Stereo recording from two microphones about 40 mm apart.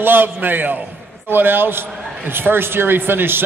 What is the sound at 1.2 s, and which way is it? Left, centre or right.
A man's voice, right.